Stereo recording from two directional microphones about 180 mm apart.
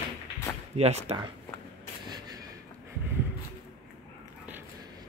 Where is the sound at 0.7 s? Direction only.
35° right (ahead or behind).